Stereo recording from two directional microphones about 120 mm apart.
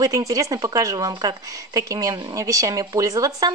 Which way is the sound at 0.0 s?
30° right (ahead or behind).